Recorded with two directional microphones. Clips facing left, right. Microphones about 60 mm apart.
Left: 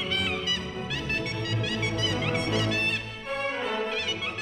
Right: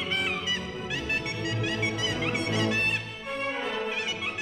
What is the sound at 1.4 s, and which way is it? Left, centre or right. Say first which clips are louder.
Music: right 1 dB; right.